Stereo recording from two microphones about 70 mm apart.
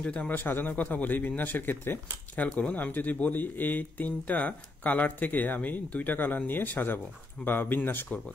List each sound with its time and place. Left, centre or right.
0.0 s speech: centre
0.4 s speech: left